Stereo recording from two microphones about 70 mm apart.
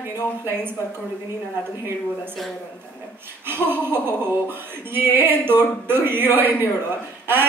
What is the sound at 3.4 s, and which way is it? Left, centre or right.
Speech, right.